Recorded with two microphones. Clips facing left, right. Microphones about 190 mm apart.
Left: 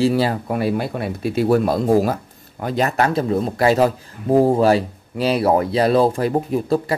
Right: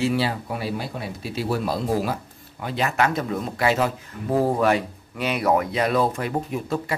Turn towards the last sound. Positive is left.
turn(degrees=35)  # may be behind; listen again after turning